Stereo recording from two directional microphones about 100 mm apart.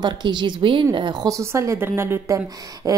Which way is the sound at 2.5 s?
40° right (ahead or behind).